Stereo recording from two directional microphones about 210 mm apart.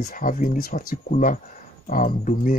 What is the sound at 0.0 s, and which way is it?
Speech, 40° left (ahead or behind).